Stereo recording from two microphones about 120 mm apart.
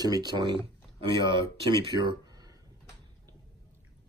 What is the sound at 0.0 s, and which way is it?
Speech, 35° right (ahead or behind).